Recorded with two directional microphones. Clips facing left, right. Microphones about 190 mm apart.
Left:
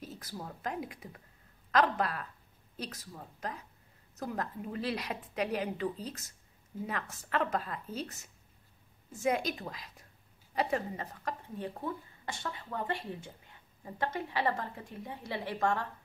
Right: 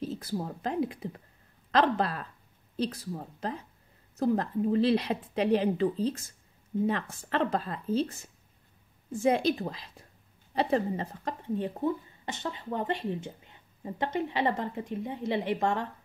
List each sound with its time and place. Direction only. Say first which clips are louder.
0.0 s speech: right 10 dB; 25° right (ahead or behind)